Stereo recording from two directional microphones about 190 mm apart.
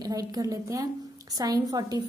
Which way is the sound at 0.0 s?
20° right (ahead or behind).